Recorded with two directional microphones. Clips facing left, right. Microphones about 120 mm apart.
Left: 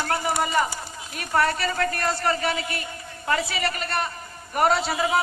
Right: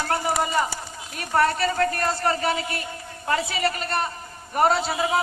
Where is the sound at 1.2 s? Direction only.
30° right (ahead or behind).